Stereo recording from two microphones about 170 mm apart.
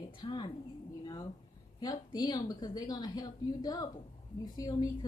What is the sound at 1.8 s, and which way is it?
A woman's voice, 25° left (ahead or behind).